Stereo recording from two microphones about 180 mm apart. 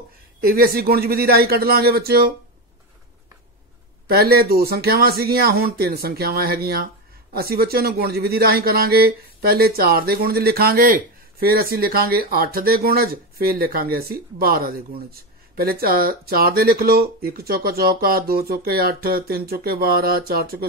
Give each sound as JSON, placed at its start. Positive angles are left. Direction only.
{"t": 0.4, "sound": "speech", "side_deg": -55}
{"t": 4.1, "sound": "speech", "side_deg": -60}